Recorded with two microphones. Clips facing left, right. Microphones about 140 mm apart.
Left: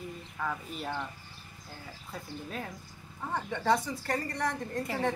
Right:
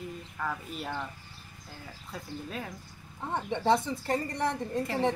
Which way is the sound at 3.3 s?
20° right (ahead or behind).